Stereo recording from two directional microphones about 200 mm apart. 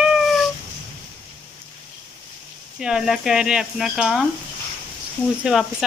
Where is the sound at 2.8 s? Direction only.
5° right (ahead or behind).